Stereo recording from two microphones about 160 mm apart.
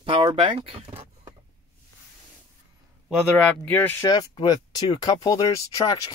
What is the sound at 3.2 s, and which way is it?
Speech, 10° left (ahead or behind).